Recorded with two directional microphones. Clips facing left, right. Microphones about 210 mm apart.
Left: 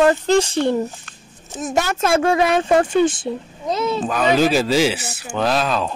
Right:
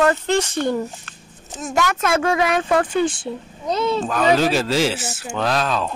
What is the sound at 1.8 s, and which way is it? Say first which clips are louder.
A woman's voice: left 2 dB; 30° left (ahead or behind).